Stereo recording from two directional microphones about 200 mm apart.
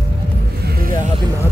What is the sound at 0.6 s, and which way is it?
Speech, 50° right (ahead or behind).